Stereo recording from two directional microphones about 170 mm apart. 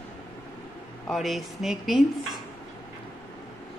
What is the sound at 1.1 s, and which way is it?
Speech, centre (ahead or behind).